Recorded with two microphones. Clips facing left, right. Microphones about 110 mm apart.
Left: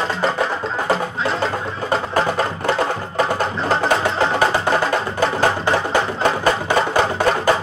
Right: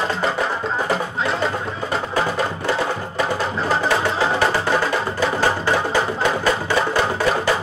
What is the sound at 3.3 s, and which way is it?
Music, 50° left (ahead or behind).